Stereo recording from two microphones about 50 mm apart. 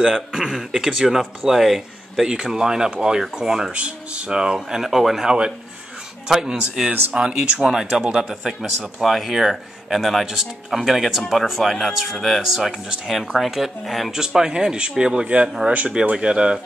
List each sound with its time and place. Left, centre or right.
0.0 s speech: centre
3.7 s speech: right; by 14.1 s centre
14.1 s speech: centre